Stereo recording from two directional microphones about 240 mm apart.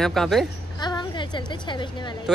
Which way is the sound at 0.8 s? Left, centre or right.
Centre.